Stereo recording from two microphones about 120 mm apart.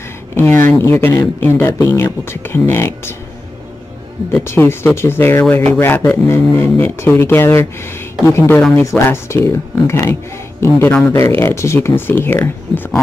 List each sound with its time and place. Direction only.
0.3 s speech: 20° left (ahead or behind)
4.5 s a man's voice: 20° left (ahead or behind)